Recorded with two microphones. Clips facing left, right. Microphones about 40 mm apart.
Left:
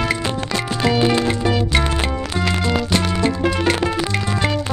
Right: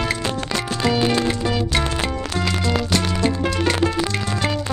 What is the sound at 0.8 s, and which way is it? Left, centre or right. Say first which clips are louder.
Music: left 2 dB; centre.